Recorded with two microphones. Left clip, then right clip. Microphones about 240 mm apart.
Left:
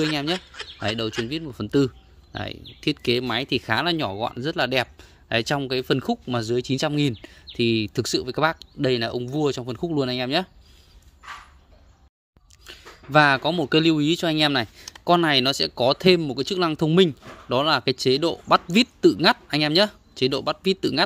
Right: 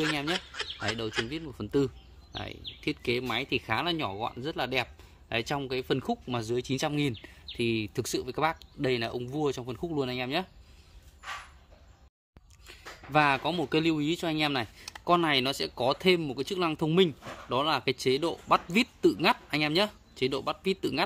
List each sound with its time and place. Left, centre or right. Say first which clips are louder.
0.3 s speech: left 4 dB; centre
1.3 s speech: left 7 dB; left
12.6 s speech: left 4 dB; left